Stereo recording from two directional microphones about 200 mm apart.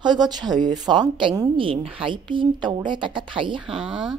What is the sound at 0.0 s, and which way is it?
Speech, 20° right (ahead or behind).